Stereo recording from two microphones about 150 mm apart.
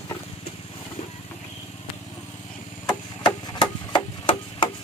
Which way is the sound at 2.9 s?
30° left (ahead or behind).